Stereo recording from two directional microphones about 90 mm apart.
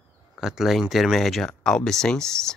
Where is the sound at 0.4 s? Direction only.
5° right (ahead or behind).